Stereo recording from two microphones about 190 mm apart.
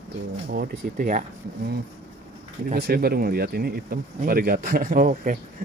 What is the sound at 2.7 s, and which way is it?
Speech, 55° right (ahead or behind).